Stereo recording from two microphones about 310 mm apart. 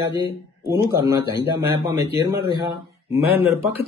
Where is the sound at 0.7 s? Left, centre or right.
Centre.